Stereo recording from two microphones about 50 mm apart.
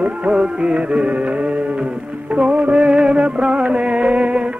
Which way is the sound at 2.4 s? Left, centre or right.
Right.